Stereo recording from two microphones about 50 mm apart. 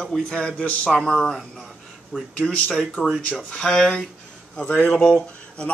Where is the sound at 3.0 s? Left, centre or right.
Right.